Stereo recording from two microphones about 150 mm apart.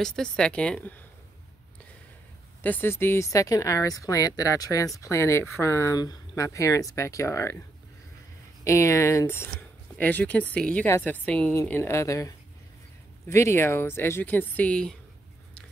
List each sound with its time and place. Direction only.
0.0 s speech: 5° left (ahead or behind)
2.6 s speech: 15° left (ahead or behind)
8.6 s speech: 20° left (ahead or behind)